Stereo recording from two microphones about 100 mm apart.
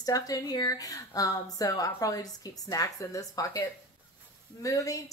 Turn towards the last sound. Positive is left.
turn(degrees=35)  # may be behind; listen again after turning